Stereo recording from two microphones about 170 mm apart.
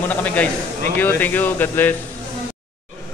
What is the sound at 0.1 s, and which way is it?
A man's voice, 10° left (ahead or behind).